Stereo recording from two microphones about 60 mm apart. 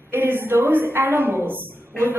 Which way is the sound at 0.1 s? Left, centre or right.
Right.